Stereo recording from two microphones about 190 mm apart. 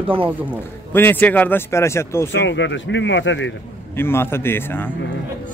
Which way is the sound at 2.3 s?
75° left (ahead or behind).